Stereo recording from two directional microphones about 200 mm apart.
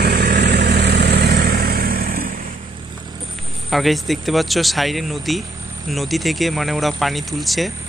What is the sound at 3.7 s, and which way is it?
Speech, centre (ahead or behind).